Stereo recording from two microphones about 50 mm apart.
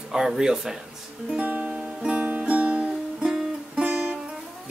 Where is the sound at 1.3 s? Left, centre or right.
Right.